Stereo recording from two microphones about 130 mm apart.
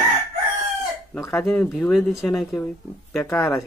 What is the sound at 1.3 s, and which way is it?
Speech, centre (ahead or behind).